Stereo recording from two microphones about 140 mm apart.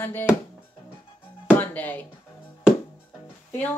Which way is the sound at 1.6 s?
10° left (ahead or behind).